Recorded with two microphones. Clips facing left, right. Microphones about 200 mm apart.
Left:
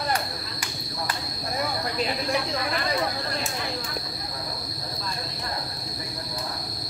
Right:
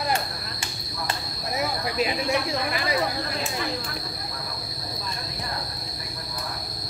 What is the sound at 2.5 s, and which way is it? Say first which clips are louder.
Speech: right 1 dB; 10° right (ahead or behind).